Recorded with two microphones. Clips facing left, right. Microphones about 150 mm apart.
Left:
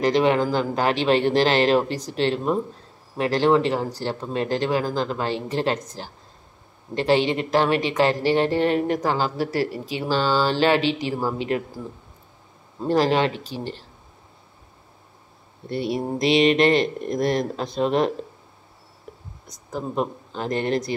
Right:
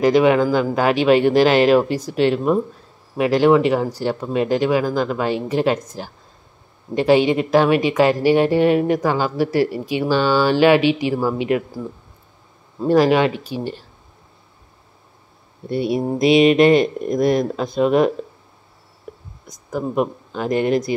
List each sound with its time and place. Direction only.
0.0 s speech: 10° right (ahead or behind)
12.8 s speech: 15° right (ahead or behind)
15.7 s speech: 15° right (ahead or behind)
19.7 s speech: 15° right (ahead or behind)